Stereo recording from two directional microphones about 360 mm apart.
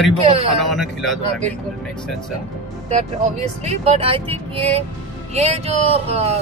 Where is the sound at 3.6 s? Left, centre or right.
Centre.